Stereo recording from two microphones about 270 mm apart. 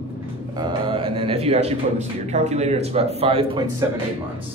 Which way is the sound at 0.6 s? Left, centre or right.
Centre.